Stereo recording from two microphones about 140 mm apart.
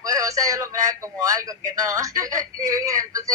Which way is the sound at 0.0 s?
25° right (ahead or behind).